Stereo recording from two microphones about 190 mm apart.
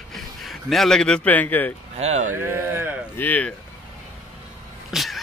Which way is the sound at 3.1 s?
10° left (ahead or behind).